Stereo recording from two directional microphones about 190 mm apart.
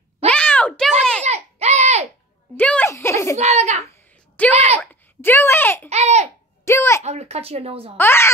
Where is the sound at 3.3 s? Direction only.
35° right (ahead or behind).